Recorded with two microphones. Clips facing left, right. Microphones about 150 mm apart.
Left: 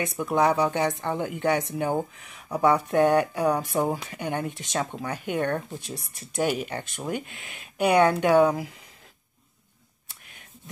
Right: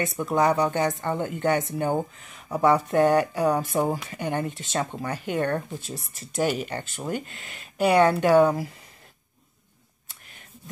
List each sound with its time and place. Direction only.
0.0 s speech: centre (ahead or behind)
5.8 s speech: 60° left (ahead or behind)
6.4 s speech: 5° left (ahead or behind)